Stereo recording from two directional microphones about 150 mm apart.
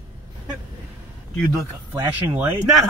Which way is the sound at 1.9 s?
25° right (ahead or behind).